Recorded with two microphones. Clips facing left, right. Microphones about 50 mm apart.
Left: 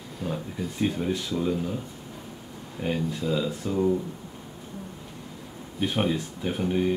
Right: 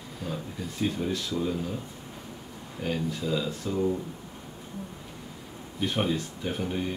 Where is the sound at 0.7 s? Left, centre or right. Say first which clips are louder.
Left 2 dB; centre.